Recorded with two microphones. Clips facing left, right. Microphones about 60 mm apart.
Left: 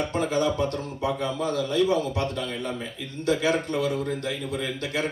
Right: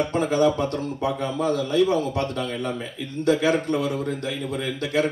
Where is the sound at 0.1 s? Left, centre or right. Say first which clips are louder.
Right 4 dB; right.